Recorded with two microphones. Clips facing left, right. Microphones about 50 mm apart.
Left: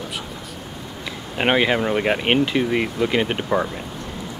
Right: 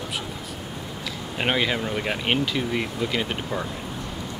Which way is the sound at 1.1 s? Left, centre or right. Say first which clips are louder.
Left 5 dB; left.